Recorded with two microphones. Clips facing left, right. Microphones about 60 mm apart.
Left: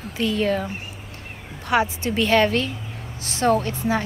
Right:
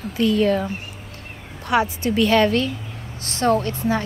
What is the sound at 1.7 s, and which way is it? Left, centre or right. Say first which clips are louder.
Speech: right 1 dB; left.